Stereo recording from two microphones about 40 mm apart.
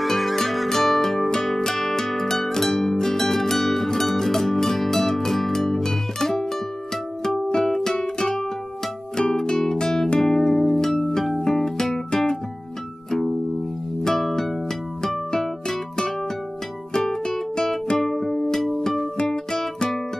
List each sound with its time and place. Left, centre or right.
0.0 s music: centre
14.0 s music: centre
19.1 s music: centre